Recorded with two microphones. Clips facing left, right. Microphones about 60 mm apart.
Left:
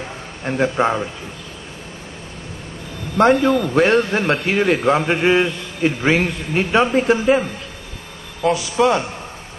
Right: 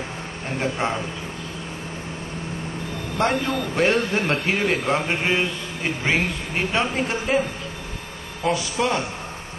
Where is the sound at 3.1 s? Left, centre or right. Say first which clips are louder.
Left 9 dB; left.